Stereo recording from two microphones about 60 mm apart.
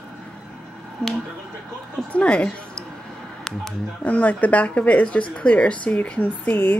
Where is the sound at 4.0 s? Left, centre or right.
Left.